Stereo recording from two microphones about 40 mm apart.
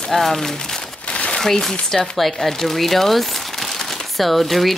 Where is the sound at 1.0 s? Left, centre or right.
Left.